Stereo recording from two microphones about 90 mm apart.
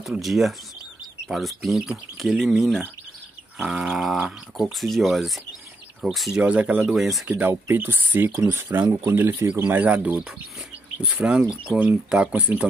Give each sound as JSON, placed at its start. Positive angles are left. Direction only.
{"t": 0.2, "sound": "speech", "side_deg": 0}